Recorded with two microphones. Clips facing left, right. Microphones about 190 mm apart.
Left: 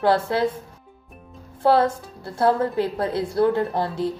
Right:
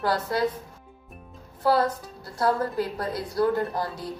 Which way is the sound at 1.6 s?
25° left (ahead or behind).